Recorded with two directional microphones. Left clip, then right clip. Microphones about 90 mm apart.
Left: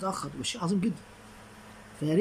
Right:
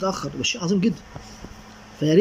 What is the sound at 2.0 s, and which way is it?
Speech, 20° right (ahead or behind).